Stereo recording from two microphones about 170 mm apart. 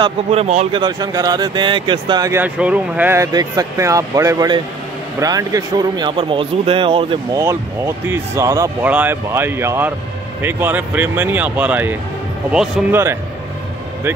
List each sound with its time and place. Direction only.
0.0 s speech: 35° right (ahead or behind)
0.7 s speech: 25° right (ahead or behind)
2.4 s speech: 10° right (ahead or behind); by 7.2 s 30° right (ahead or behind)
7.3 s speech: 15° right (ahead or behind)